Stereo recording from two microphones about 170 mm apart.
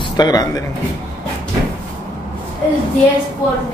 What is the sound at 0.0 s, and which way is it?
Speech, 25° left (ahead or behind).